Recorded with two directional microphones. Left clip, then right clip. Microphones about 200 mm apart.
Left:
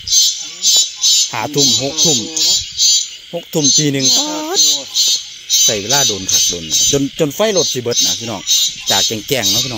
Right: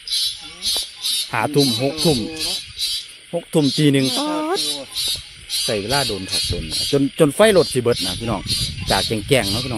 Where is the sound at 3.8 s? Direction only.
10° right (ahead or behind).